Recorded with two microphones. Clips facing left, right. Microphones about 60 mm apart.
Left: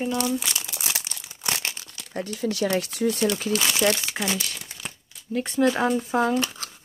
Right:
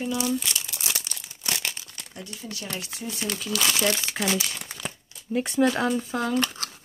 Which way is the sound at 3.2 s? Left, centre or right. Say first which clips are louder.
Left 6 dB; left.